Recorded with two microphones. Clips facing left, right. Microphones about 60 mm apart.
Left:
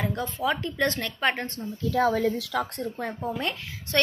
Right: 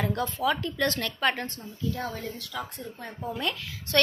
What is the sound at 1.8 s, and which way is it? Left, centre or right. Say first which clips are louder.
Speech: left 9 dB; left.